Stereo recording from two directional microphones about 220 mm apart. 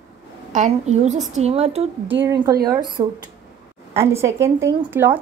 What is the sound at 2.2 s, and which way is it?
A woman's voice, 15° right (ahead or behind).